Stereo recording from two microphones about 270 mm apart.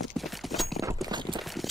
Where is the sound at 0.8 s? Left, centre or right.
Centre.